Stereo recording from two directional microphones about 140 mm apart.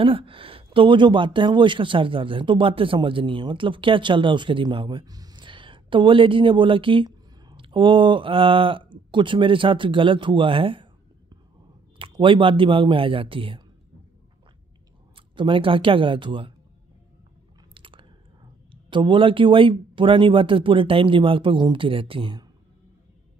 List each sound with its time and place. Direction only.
0.0 s speech: 40° right (ahead or behind)
15.3 s speech: 35° right (ahead or behind)
17.7 s speech: 35° right (ahead or behind)